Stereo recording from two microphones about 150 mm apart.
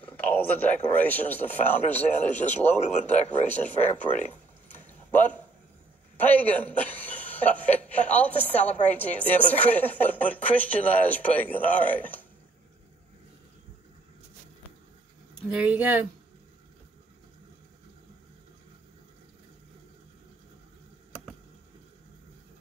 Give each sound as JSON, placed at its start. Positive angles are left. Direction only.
{"t": 0.0, "sound": "speech", "side_deg": 10}
{"t": 2.9, "sound": "speech", "side_deg": 50}
{"t": 3.3, "sound": "speech", "side_deg": 10}
{"t": 4.8, "sound": "a sound", "side_deg": 10}
{"t": 6.1, "sound": "speech", "side_deg": 10}
{"t": 15.5, "sound": "speech", "side_deg": -10}